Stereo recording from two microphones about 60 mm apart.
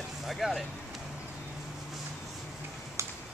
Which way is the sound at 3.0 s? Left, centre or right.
Right.